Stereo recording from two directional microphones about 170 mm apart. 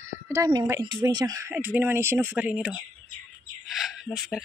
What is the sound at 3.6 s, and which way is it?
Bird, centre (ahead or behind).